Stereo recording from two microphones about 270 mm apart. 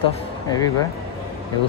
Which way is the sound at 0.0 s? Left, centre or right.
Centre.